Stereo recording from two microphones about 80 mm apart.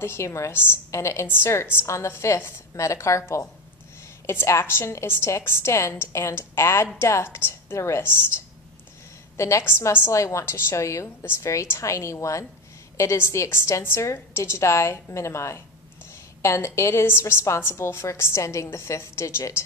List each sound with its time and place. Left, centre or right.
0.0 s a woman's voice: left
9.4 s a woman's voice: left